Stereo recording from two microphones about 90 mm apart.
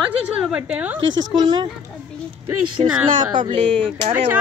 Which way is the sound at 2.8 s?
80° right.